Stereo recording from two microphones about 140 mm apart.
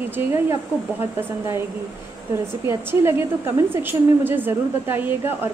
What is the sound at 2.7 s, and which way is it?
A woman's voice, 15° right (ahead or behind).